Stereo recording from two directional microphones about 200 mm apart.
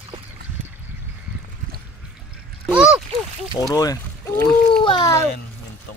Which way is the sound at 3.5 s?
20° left (ahead or behind).